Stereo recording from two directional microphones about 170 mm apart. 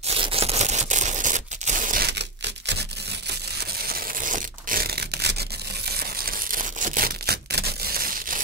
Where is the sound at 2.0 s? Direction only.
90° right.